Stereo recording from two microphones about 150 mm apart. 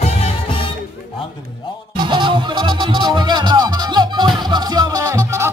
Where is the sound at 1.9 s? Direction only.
30° right (ahead or behind).